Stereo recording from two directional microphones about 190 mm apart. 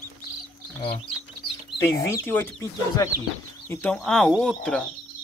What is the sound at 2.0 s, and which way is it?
Speech, 15° left (ahead or behind).